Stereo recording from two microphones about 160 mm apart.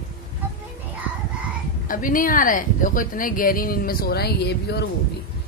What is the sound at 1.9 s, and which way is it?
A woman's voice, 60° left (ahead or behind).